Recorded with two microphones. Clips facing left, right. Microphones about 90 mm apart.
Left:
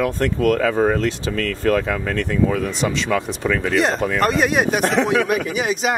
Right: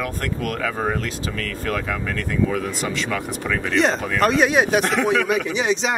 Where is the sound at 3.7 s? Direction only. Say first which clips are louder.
Right 2 dB; centre (ahead or behind).